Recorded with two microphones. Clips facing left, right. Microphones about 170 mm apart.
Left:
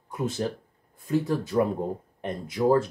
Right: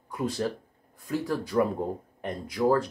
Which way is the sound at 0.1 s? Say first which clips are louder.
Even; 20° left (ahead or behind).